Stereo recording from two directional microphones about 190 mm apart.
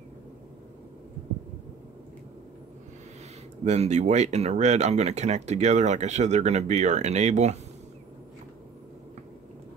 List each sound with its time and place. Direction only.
3.6 s speech: 35° right (ahead or behind)